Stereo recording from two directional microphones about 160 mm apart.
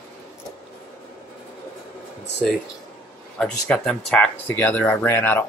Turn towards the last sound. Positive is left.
turn(degrees=15)  # may be behind; listen again after turning